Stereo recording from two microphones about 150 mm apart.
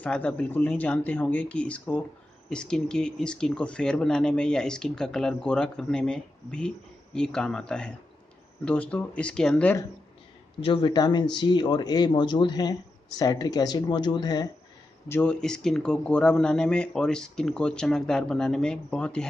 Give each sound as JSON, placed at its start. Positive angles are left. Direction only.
{"t": 0.0, "sound": "speech", "side_deg": 10}
{"t": 10.6, "sound": "speech", "side_deg": 35}
{"t": 15.0, "sound": "speech", "side_deg": 15}
{"t": 15.4, "sound": "speech", "side_deg": 5}